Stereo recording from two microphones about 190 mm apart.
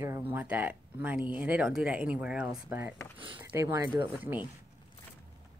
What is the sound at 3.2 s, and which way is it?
A woman's voice, 25° right (ahead or behind).